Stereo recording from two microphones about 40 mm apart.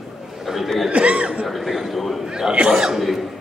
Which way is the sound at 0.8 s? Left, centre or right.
Right.